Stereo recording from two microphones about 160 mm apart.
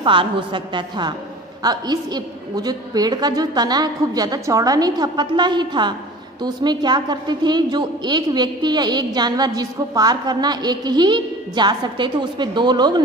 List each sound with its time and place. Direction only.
0.0 s a woman's voice: 30° right (ahead or behind)